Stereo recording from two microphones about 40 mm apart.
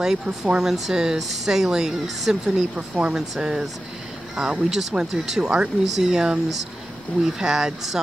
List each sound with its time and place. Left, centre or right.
0.0 s a woman's voice: centre
2.7 s speech: right
3.2 s a woman's voice: centre